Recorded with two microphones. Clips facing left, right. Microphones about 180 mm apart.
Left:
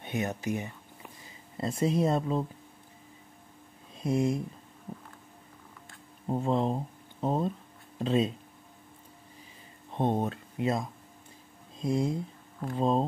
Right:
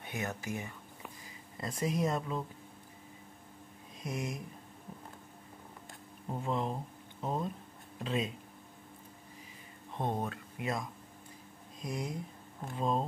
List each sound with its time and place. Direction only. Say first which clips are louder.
0.0 s speech: left 7 dB; 20° left (ahead or behind)
4.0 s speech: left 11 dB; 30° left (ahead or behind)
6.2 s speech: left 7 dB; 30° left (ahead or behind)
9.9 s speech: left 7 dB; 25° left (ahead or behind)